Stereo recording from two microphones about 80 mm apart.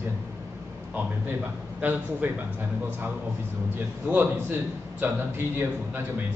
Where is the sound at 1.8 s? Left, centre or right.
Right.